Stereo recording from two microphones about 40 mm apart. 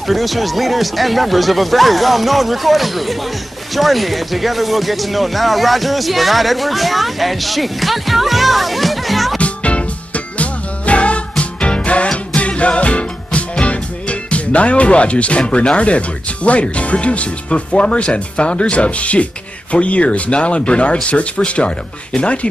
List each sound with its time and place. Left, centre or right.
0.0 s speech: centre
9.4 s music: left
16.4 s speech: left